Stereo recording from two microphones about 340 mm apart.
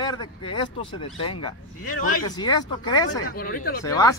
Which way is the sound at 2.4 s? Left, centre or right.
Centre.